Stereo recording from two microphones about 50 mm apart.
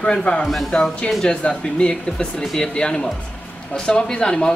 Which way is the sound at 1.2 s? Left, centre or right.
Centre.